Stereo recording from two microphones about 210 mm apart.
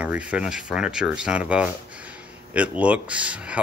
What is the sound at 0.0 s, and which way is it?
Speech, 5° right (ahead or behind).